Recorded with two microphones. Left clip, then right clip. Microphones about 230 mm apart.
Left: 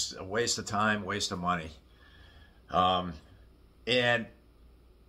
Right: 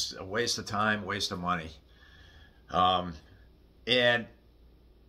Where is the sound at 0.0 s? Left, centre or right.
Centre.